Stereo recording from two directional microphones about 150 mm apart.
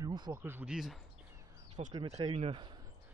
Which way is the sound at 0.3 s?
15° right (ahead or behind).